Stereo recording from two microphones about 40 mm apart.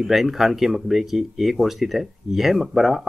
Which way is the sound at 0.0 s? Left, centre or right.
Centre.